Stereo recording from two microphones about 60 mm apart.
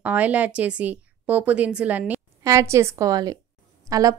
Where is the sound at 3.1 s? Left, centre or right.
Right.